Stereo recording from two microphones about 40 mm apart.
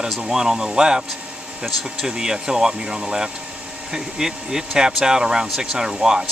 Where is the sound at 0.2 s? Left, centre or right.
Centre.